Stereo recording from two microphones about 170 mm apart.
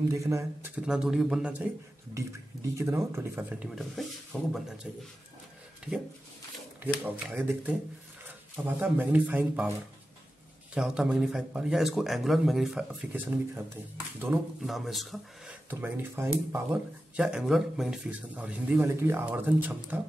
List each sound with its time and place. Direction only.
0.1 s speech: 20° right (ahead or behind)
0.7 s a man's voice: 5° right (ahead or behind)
6.8 s speech: 10° right (ahead or behind)
10.7 s a man's voice: 5° right (ahead or behind)
14.7 s a man's voice: centre (ahead or behind)
15.7 s speech: 10° right (ahead or behind)